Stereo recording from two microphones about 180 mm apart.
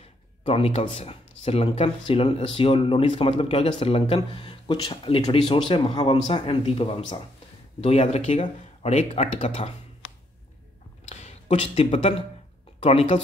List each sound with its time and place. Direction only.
0.4 s speech: 30° left (ahead or behind)
11.1 s speech: 35° left (ahead or behind)